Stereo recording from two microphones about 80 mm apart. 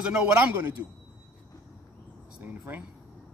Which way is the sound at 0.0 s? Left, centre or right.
Centre.